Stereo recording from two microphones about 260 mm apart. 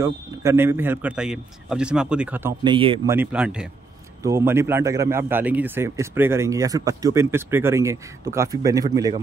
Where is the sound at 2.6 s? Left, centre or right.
Centre.